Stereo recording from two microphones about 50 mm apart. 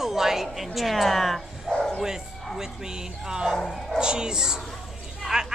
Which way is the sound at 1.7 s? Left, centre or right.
Centre.